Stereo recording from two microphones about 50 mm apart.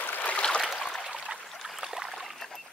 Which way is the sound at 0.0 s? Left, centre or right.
Left.